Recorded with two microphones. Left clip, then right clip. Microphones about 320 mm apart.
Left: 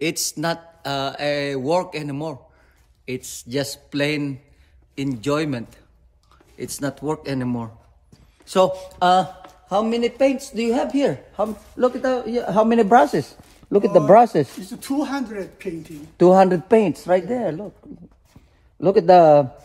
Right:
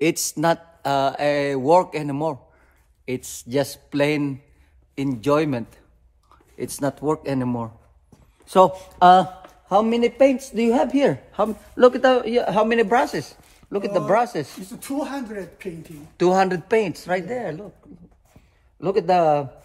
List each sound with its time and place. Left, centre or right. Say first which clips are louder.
0.0 s a man's voice: right 3 dB; right
12.6 s speech: left 4 dB; centre
14.8 s speech: left 3 dB; centre
16.2 s speech: left 5 dB; centre
18.8 s speech: left 6 dB; left